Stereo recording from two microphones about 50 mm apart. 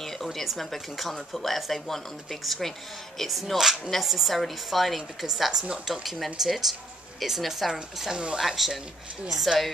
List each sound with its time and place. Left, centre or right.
0.0 s a woman's voice: centre
8.1 s speech: centre
8.4 s a woman's voice: centre